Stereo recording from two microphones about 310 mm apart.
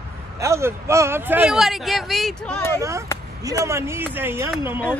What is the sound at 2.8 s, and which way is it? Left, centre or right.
Speech, centre.